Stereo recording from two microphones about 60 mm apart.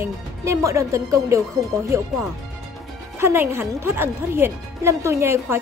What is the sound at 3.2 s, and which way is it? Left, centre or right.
A woman's voice, right.